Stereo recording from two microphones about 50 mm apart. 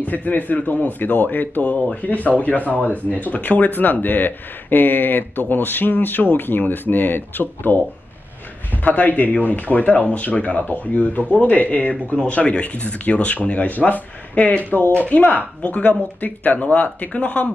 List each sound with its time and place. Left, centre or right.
0.0 s speech: left
8.8 s speech: left